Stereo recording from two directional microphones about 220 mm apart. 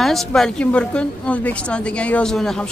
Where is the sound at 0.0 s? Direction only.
Centre (ahead or behind).